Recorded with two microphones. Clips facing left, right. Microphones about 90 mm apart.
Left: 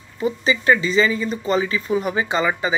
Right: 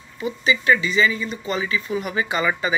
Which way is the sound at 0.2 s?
35° left (ahead or behind).